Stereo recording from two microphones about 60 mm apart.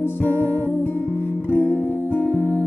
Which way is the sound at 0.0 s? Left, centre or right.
Left.